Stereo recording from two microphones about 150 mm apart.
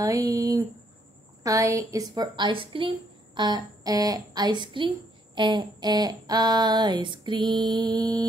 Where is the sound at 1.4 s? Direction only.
20° right (ahead or behind).